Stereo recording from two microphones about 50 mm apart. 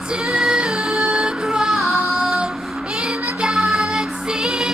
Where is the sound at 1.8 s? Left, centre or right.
Centre.